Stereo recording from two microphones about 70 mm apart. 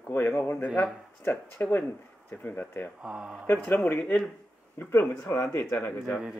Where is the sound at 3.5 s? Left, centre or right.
Left.